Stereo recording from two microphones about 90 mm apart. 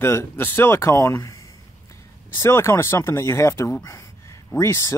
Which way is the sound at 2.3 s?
30° left (ahead or behind).